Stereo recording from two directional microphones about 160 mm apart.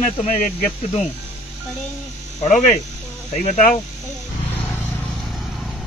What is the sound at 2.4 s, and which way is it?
A man's voice, 50° left (ahead or behind).